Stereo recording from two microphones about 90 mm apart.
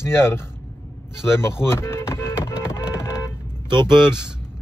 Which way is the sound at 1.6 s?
30° left (ahead or behind).